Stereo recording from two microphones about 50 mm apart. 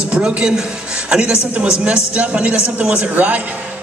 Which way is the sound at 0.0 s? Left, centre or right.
Centre.